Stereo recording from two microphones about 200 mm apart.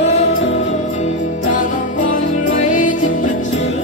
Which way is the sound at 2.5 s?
40° left (ahead or behind).